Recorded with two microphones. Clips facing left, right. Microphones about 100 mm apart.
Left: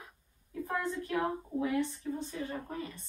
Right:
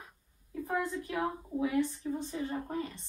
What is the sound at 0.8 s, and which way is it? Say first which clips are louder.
A woman's voice: left 2 dB; 15° right (ahead or behind).